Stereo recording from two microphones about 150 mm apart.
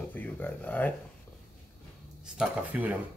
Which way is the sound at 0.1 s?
10° left (ahead or behind).